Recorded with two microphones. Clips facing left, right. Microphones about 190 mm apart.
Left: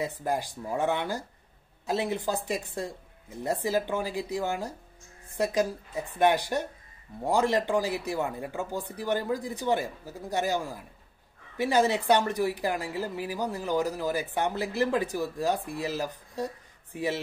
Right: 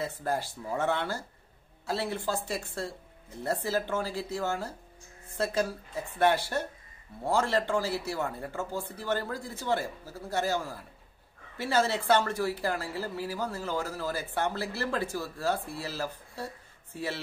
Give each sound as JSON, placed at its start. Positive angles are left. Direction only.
{"t": 0.0, "sound": "speech", "side_deg": 15}